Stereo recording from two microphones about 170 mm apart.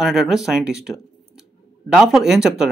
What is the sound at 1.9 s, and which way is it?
Speech, centre (ahead or behind).